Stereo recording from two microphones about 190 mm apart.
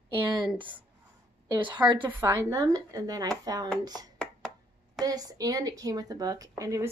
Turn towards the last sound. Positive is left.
turn(degrees=-15)  # may be behind; listen again after turning